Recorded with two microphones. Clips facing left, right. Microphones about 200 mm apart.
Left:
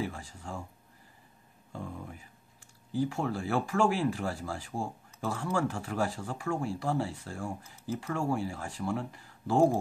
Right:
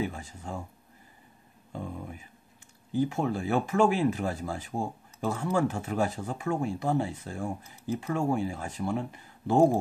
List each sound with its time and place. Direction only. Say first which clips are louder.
0.0 s speech: right 3 dB; 20° right (ahead or behind)
1.7 s speech: right 3 dB; 20° right (ahead or behind)